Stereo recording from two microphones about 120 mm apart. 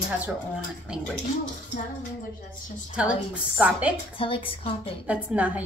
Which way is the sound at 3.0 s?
10° right (ahead or behind).